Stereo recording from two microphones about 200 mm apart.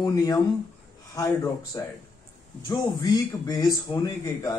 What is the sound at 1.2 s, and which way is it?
Speech, 15° left (ahead or behind).